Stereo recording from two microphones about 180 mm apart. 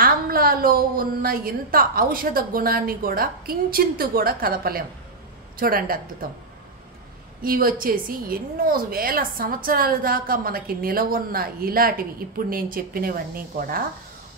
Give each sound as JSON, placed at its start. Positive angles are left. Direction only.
{"t": 0.0, "sound": "a woman's voice", "side_deg": -55}
{"t": 7.4, "sound": "a woman's voice", "side_deg": -50}